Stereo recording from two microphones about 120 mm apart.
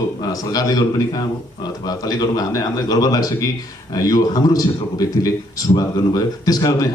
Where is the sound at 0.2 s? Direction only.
30° left (ahead or behind).